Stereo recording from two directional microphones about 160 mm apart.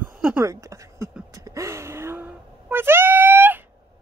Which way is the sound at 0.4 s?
20° right (ahead or behind).